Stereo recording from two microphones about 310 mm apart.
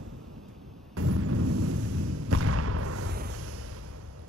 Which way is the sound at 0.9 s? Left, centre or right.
Right.